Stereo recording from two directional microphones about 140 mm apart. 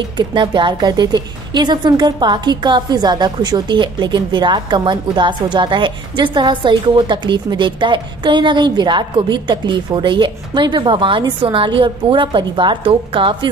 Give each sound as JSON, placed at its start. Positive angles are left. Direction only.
{"t": 0.2, "sound": "a woman's voice", "side_deg": -35}